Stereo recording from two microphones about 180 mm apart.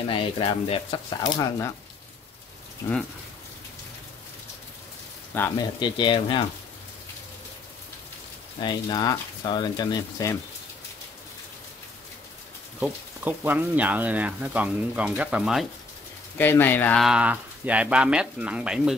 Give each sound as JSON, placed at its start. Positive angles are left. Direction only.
{"t": 0.1, "sound": "speech", "side_deg": 30}
{"t": 5.3, "sound": "speech", "side_deg": 15}
{"t": 5.8, "sound": "speech", "side_deg": 25}
{"t": 8.5, "sound": "speech", "side_deg": 25}
{"t": 12.8, "sound": "speech", "side_deg": -10}
{"t": 16.3, "sound": "speech", "side_deg": 10}
{"t": 17.0, "sound": "speech", "side_deg": -5}